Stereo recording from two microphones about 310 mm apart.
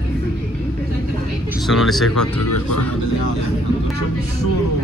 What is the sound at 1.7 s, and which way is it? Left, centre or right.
Speech, centre.